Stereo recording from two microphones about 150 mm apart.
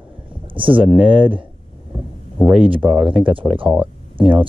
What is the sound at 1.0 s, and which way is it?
Speech, 35° right (ahead or behind).